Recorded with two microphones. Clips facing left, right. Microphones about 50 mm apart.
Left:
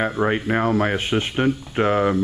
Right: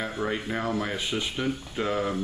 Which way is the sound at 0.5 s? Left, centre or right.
Left.